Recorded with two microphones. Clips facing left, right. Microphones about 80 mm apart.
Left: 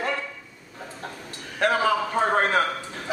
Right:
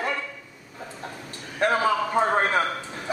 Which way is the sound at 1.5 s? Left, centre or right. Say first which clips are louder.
Even; right.